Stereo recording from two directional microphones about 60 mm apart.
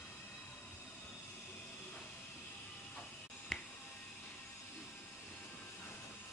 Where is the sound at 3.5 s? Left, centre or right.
Centre.